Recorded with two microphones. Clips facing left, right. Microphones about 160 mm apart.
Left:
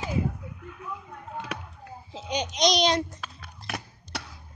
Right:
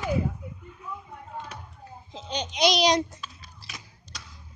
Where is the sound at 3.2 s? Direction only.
60° left (ahead or behind).